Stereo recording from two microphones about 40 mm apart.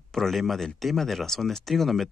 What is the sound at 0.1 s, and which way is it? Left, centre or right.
Speech, centre.